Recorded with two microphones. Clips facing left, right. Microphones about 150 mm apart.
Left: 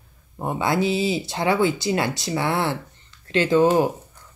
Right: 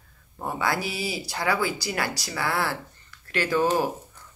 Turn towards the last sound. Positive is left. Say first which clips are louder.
# left 6 dB
turn(degrees=20)  # may be behind; listen again after turning